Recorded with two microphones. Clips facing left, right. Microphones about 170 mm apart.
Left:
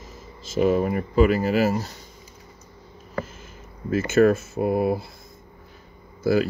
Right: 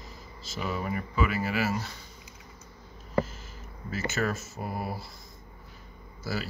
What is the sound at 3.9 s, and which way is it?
Speech, 55° left (ahead or behind).